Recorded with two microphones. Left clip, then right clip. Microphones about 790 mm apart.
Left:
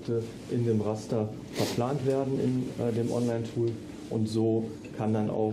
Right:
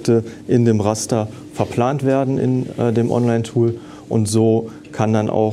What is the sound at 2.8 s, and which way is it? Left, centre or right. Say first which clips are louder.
Speech: right 13 dB; right.